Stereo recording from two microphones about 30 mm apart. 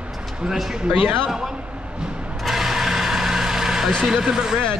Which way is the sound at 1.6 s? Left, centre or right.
Right.